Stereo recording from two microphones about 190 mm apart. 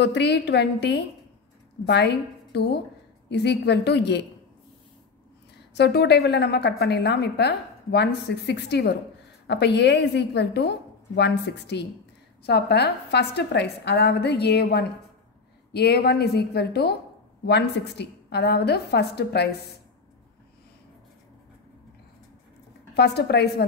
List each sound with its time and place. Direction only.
0.0 s a woman's voice: 65° left (ahead or behind)
5.8 s a woman's voice: 60° left (ahead or behind)
22.9 s a woman's voice: 60° left (ahead or behind)